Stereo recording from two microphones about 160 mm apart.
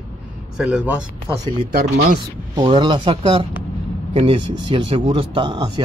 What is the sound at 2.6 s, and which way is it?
Speech, 30° right (ahead or behind).